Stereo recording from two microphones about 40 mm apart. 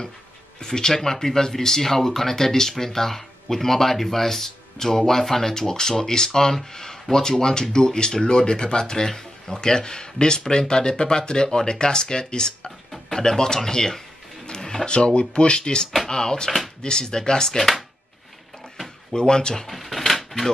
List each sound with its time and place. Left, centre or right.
0.6 s speech: centre
16.4 s speech: centre
16.8 s speech: centre
19.1 s speech: centre
19.7 s a sound: centre